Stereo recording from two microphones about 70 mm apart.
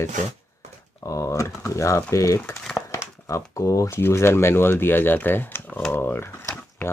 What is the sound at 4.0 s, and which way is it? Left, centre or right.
Speech, left.